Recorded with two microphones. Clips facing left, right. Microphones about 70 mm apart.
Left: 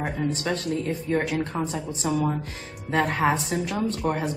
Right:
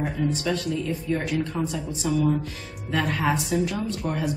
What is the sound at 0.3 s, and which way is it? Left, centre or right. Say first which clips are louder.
Speech: right 1 dB; left.